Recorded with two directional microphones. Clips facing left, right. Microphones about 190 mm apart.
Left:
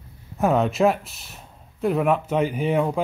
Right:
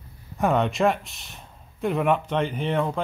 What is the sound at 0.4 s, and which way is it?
Speech, centre (ahead or behind).